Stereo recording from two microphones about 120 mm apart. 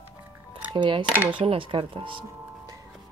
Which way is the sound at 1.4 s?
45° right (ahead or behind).